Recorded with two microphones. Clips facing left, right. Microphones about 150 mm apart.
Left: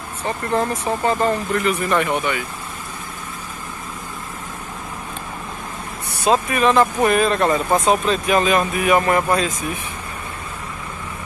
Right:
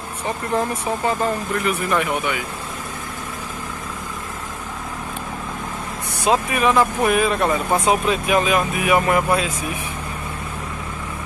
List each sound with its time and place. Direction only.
0.2 s speech: 10° right (ahead or behind)
6.2 s speech: 10° right (ahead or behind)